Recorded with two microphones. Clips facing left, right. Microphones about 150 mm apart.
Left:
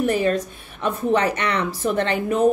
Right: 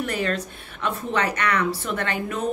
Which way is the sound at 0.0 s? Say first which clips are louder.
Left 6 dB; 20° left (ahead or behind).